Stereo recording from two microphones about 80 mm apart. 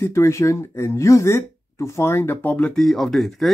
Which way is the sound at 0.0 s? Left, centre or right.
Left.